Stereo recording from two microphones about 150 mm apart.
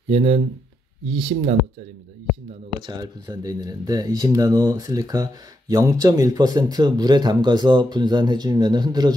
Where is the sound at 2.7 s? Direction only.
30° right (ahead or behind).